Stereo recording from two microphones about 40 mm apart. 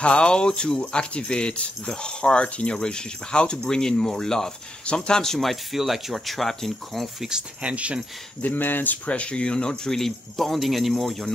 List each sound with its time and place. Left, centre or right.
0.0 s speech: left; by 7.1 s centre
7.6 s speech: right
8.4 s speech: left
9.0 s a man's voice: left; by 11.2 s centre